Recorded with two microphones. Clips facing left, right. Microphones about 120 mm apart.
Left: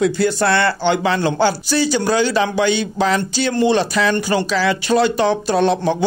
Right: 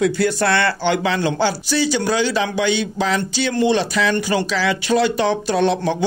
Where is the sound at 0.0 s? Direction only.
30° left (ahead or behind).